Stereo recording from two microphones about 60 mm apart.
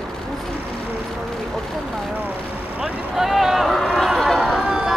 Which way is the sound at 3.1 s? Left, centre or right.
Centre.